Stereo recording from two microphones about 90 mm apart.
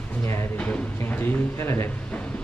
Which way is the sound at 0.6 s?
15° left (ahead or behind).